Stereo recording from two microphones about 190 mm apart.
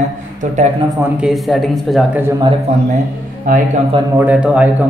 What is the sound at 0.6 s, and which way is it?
Speech, 35° right (ahead or behind).